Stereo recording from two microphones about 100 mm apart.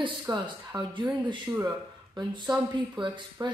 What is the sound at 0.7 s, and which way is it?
Speech, 45° right (ahead or behind).